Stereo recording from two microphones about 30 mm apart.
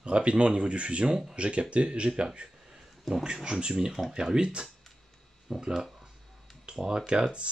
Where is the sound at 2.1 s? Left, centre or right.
Right.